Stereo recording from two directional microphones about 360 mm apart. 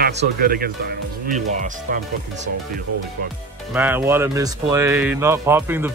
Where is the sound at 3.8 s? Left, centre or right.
Centre.